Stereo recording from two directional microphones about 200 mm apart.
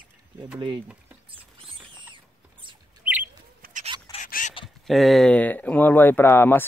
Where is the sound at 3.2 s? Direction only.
40° right (ahead or behind).